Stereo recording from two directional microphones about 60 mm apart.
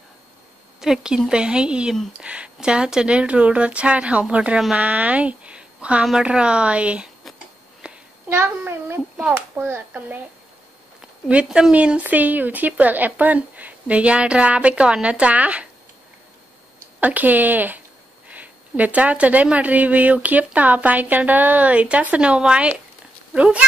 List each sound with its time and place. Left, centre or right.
0.7 s a woman's voice: centre
7.8 s a sound: centre
8.4 s a child's voice: right
11.4 s a woman's voice: centre
11.7 s speech: right
17.0 s speech: right